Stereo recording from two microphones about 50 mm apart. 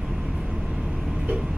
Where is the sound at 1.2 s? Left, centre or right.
Centre.